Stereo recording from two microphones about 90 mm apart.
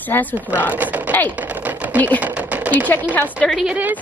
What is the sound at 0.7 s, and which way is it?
Speech, 20° right (ahead or behind).